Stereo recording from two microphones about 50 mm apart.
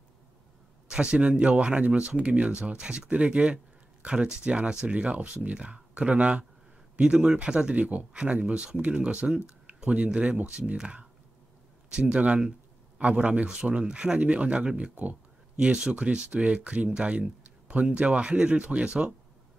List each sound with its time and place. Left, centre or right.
0.8 s speech: centre
12.4 s a sound: centre
13.1 s speech: right